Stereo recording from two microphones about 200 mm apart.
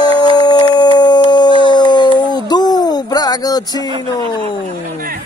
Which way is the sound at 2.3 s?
20° left (ahead or behind).